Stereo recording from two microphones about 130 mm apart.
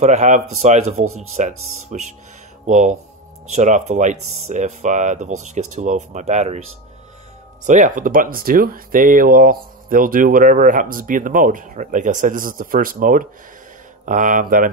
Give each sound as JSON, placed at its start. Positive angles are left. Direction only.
{"t": 0.0, "sound": "speech", "side_deg": -65}
{"t": 7.6, "sound": "speech", "side_deg": -75}